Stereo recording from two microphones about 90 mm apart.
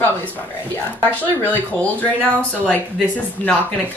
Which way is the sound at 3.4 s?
15° left (ahead or behind).